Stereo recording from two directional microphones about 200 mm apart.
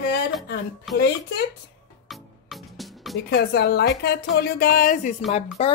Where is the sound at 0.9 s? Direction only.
Centre (ahead or behind).